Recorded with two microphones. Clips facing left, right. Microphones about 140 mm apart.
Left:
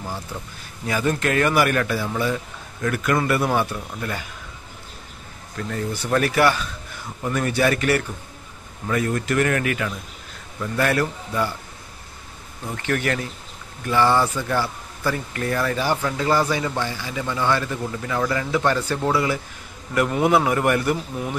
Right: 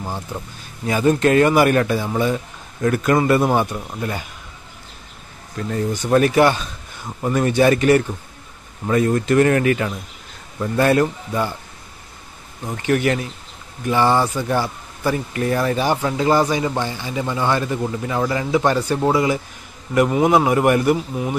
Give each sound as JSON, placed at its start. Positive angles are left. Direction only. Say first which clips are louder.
{"t": 0.8, "sound": "speech", "louder": "right 6 dB", "side_deg": -25}
{"t": 5.7, "sound": "speech", "louder": "right 5 dB", "side_deg": -25}
{"t": 12.6, "sound": "a man's voice", "louder": "right 5 dB", "side_deg": -15}